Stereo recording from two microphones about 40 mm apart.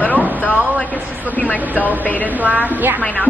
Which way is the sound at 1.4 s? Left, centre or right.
Left.